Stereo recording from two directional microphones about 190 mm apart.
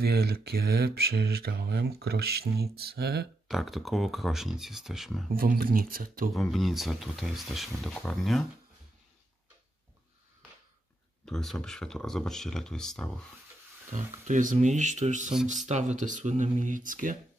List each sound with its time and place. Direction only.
0.0 s speech: 55° right (ahead or behind)
3.4 s speech: centre (ahead or behind)
5.3 s speech: 50° right (ahead or behind)
6.3 s speech: centre (ahead or behind)
11.2 s speech: 5° left (ahead or behind)
13.9 s speech: 40° right (ahead or behind)